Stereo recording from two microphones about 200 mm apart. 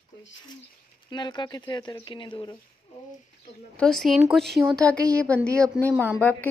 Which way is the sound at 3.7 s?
5° left (ahead or behind).